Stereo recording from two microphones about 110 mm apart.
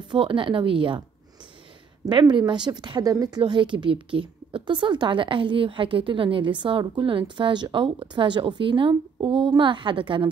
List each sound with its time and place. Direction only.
0.1 s a woman's voice: 50° right (ahead or behind)
2.0 s a woman's voice: 45° right (ahead or behind)